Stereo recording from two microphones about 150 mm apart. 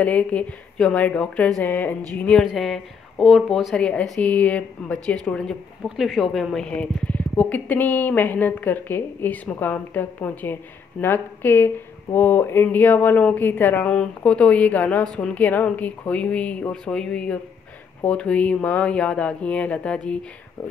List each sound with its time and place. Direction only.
0.0 s a woman's voice: 10° left (ahead or behind)